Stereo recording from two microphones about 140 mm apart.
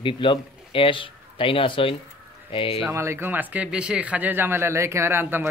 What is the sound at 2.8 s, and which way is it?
Speech, 20° right (ahead or behind).